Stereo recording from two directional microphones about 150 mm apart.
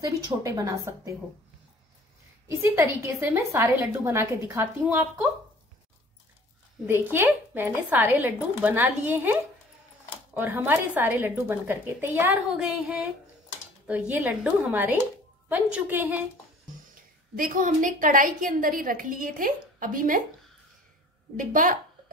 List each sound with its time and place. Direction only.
0.0 s a woman's voice: 20° right (ahead or behind)
2.4 s a woman's voice: 20° right (ahead or behind)
6.9 s a woman's voice: 15° right (ahead or behind)
16.9 s a woman's voice: 65° right (ahead or behind)
21.4 s a woman's voice: 60° right (ahead or behind)